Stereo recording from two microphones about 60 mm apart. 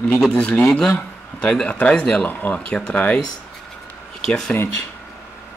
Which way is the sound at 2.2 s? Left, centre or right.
Left.